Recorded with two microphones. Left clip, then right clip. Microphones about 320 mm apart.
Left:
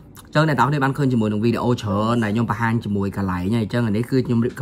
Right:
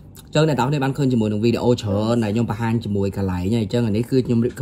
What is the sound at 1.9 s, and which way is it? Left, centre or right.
Speech, right.